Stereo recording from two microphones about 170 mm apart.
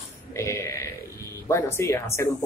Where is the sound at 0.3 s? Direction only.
15° left (ahead or behind).